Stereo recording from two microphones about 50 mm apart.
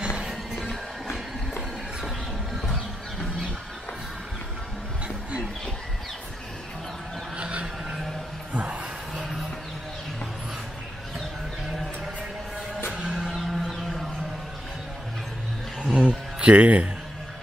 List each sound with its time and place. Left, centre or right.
0.3 s music: centre
7.3 s a sound: right
9.1 s music: centre
12.9 s music: centre
13.5 s music: centre
15.8 s a sound: centre